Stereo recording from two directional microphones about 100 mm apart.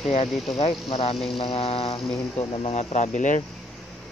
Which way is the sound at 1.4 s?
65° left (ahead or behind).